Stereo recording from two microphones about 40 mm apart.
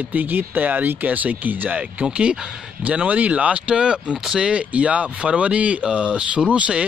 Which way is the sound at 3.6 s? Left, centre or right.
Right.